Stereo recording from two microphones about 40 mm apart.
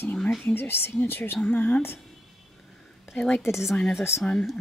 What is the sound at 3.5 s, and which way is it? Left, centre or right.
Speech, centre.